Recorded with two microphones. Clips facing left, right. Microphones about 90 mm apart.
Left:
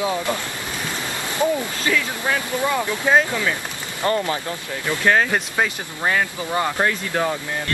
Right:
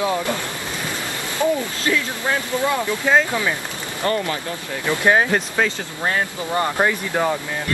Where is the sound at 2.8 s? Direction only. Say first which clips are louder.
Left 1 dB; 15° left (ahead or behind).